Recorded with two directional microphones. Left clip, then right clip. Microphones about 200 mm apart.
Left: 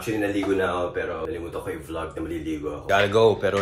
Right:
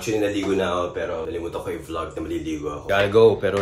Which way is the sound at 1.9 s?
5° right (ahead or behind).